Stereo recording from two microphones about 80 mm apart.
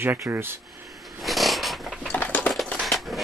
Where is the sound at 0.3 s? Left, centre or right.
Right.